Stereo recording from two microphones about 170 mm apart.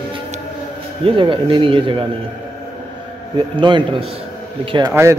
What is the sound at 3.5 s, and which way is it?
A man's voice, 30° right (ahead or behind).